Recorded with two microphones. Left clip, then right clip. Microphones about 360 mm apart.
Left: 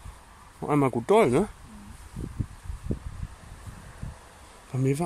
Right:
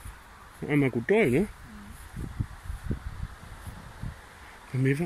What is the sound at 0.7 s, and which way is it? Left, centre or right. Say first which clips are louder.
Speech: left 2 dB; left.